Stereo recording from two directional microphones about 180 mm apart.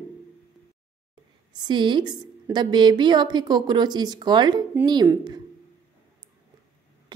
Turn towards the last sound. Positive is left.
turn(degrees=-25)  # may be behind; listen again after turning